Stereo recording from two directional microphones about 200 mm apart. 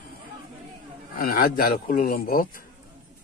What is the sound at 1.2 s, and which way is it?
Speech, 50° left (ahead or behind).